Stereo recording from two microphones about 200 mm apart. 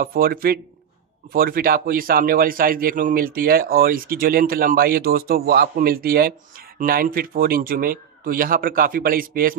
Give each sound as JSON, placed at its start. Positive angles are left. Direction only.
{"t": 0.0, "sound": "speech", "side_deg": -45}